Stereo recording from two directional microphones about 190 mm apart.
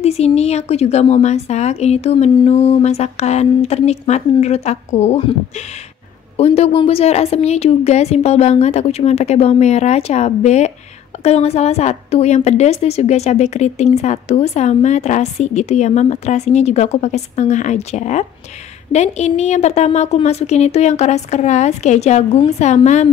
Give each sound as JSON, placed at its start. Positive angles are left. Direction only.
{"t": 0.0, "sound": "a woman's voice", "side_deg": 35}
{"t": 6.3, "sound": "a woman's voice", "side_deg": 35}